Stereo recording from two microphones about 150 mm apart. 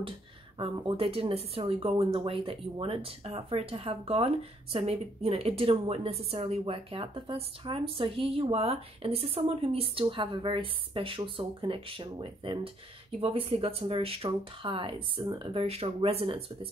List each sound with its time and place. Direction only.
0.6 s a woman's voice: 35° right (ahead or behind)